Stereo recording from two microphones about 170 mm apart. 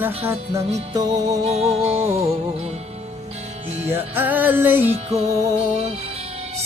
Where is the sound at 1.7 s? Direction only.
40° right (ahead or behind).